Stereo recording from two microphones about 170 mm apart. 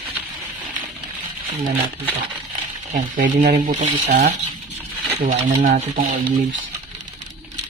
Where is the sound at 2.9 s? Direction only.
55° right (ahead or behind).